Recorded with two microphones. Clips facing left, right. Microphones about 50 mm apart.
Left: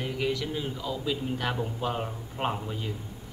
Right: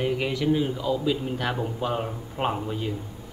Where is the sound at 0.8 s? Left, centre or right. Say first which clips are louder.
Right 6 dB; centre.